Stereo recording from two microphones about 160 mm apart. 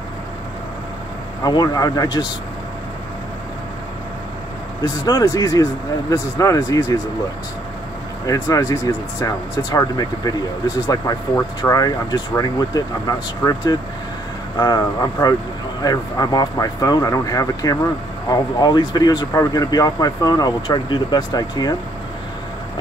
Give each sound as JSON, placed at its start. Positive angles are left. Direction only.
{"t": 1.4, "sound": "speech", "side_deg": 25}
{"t": 4.8, "sound": "speech", "side_deg": 25}
{"t": 8.3, "sound": "speech", "side_deg": 20}